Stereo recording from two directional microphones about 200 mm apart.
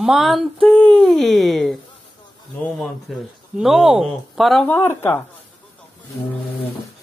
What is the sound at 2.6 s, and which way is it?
Speech, centre (ahead or behind).